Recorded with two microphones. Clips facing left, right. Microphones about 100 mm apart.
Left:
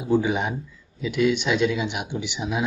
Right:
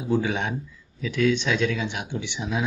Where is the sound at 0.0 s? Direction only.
5° left (ahead or behind).